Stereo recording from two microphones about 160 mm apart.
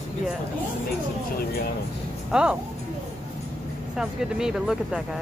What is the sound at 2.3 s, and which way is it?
Speech, 5° right (ahead or behind).